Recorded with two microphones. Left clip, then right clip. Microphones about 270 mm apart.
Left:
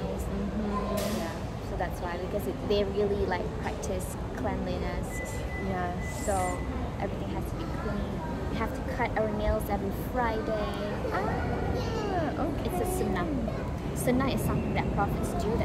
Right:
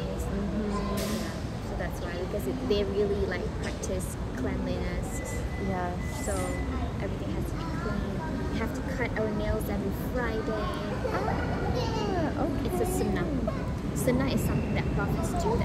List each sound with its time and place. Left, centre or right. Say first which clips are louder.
2.7 s speech: even; left
8.5 s speech: left 3 dB; centre
14.0 s speech: even; centre